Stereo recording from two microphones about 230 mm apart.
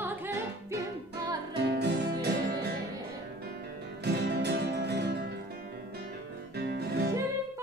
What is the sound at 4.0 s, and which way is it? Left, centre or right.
Music, right.